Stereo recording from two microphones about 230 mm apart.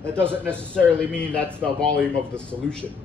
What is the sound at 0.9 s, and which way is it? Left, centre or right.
A man's voice, centre.